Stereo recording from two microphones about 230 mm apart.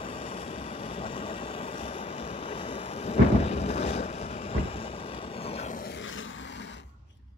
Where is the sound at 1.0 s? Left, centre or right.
Left.